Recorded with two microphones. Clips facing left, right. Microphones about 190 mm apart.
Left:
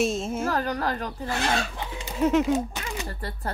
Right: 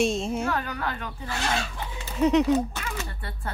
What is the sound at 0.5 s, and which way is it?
Speech, 35° left (ahead or behind).